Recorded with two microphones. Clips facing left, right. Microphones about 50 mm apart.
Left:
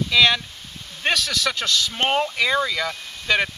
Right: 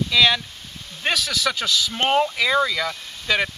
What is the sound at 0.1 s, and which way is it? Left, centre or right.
Speech, centre.